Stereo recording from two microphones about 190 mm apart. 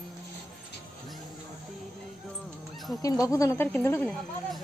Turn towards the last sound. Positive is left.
turn(degrees=10)  # may be behind; listen again after turning